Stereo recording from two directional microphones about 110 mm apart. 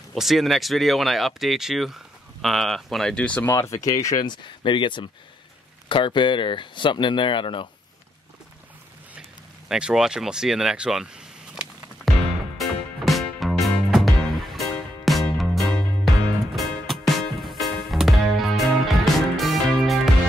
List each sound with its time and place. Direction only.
0.1 s speech: centre (ahead or behind)
3.4 s speech: 25° left (ahead or behind)
4.3 s speech: 45° left (ahead or behind)
9.7 s speech: 5° right (ahead or behind)
12.5 s music: centre (ahead or behind)